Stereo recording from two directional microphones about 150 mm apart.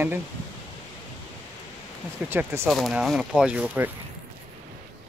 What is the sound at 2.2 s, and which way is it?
Speech, 15° right (ahead or behind).